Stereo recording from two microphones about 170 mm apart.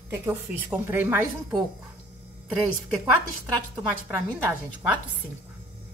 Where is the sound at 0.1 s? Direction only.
15° right (ahead or behind).